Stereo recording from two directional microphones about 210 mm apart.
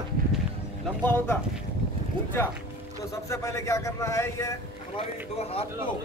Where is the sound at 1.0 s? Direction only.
10° left (ahead or behind).